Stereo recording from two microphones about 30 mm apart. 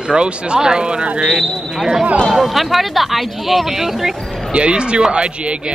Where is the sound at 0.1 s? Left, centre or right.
Right.